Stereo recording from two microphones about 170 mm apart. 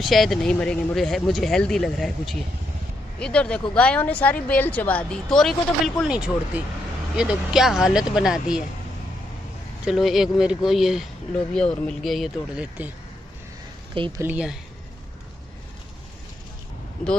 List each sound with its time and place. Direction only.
0.0 s speech: centre (ahead or behind)
9.8 s speech: centre (ahead or behind)
13.9 s speech: 30° right (ahead or behind)
14.2 s speech: 5° right (ahead or behind)